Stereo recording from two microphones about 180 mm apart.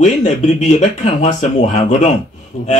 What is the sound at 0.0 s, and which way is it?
Speech, 40° left (ahead or behind).